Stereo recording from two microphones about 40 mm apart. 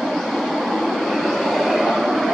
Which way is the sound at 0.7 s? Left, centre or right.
Centre.